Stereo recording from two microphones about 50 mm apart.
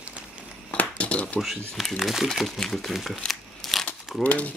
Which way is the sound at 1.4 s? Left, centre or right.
Centre.